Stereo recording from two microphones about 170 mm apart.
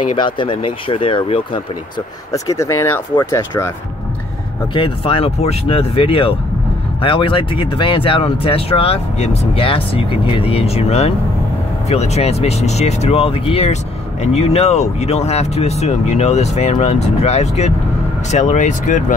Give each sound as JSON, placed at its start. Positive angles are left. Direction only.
{"t": 0.1, "sound": "speech", "side_deg": 30}
{"t": 2.3, "sound": "speech", "side_deg": 20}
{"t": 4.7, "sound": "speech", "side_deg": 30}